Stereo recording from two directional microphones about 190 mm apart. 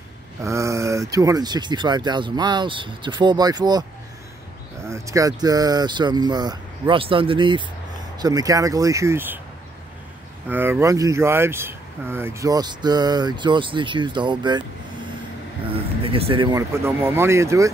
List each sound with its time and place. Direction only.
0.4 s speech: 15° right (ahead or behind)
4.8 s speech: 15° right (ahead or behind)
10.5 s speech: 10° right (ahead or behind)
15.7 s speech: 30° right (ahead or behind); by 17.6 s 15° right (ahead or behind)